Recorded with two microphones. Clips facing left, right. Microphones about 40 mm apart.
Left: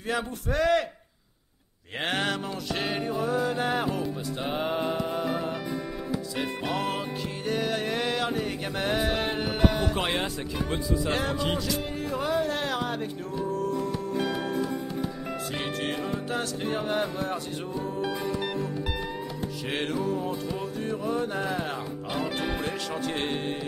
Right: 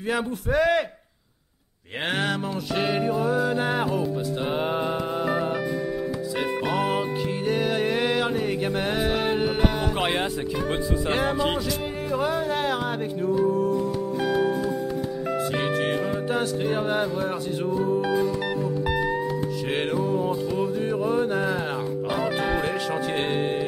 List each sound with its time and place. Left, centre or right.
0.1 s music: centre
2.0 s music: centre
6.7 s music: centre
15.8 s music: centre